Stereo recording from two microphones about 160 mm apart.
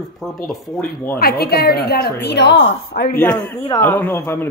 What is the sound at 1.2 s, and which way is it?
A woman's voice, 80° left.